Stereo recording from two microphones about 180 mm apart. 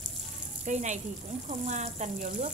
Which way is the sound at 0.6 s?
40° right (ahead or behind).